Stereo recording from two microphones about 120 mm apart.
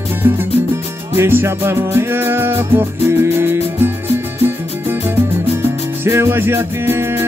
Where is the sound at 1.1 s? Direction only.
20° right (ahead or behind).